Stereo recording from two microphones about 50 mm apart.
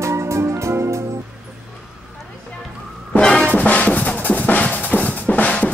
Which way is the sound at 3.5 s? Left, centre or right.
Left.